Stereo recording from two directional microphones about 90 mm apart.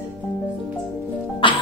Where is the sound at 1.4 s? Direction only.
65° left (ahead or behind).